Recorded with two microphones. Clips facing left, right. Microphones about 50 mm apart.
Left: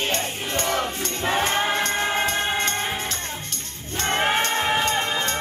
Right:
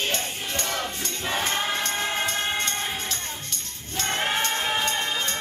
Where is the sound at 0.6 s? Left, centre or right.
Centre.